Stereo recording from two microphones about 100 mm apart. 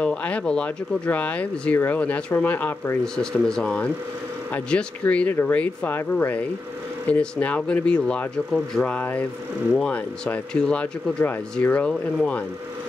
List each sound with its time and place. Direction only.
0.0 s speech: 10° left (ahead or behind)
3.2 s speech: 5° left (ahead or behind)